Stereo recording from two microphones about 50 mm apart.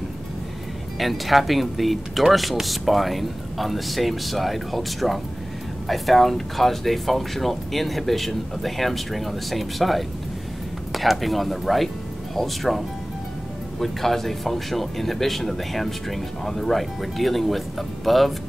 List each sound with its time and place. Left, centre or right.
0.9 s speech: centre